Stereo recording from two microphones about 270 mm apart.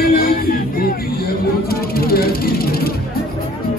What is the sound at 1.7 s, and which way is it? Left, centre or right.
Vehicle, left.